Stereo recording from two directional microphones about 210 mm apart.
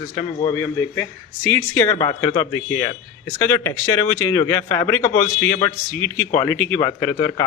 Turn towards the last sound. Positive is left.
turn(degrees=15)  # may be behind; listen again after turning